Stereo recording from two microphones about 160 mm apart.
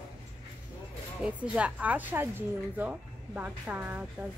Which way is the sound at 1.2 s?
5° right (ahead or behind).